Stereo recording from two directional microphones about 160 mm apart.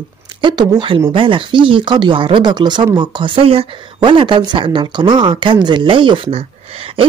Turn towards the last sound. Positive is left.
turn(degrees=-35)  # may be behind; listen again after turning